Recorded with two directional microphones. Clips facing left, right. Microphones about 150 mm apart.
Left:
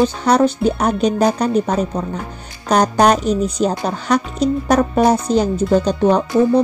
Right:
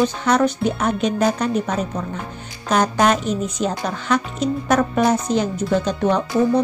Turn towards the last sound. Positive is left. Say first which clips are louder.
# left 4 dB
turn(degrees=35)  # may be behind; listen again after turning